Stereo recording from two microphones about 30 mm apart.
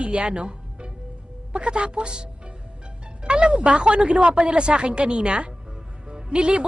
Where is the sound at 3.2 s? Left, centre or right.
Right.